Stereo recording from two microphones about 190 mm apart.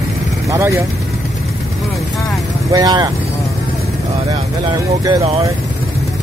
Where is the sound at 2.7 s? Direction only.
20° right (ahead or behind).